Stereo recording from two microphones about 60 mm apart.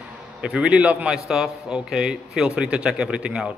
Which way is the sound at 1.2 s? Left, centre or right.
Centre.